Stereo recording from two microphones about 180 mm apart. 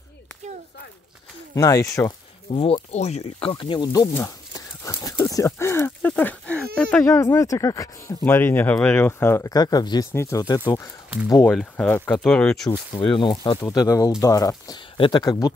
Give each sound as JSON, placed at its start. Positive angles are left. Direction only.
{"t": 1.5, "sound": "speech", "side_deg": 20}
{"t": 2.5, "sound": "speech", "side_deg": 30}
{"t": 11.4, "sound": "speech", "side_deg": 5}
{"t": 12.6, "sound": "speech", "side_deg": 25}